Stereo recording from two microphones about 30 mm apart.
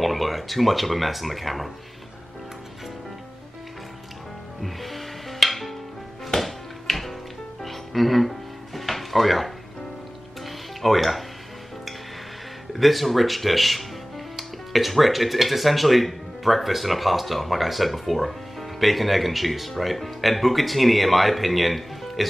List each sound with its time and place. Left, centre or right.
0.0 s speech: centre
4.6 s music: centre
10.8 s speech: centre
12.7 s speech: centre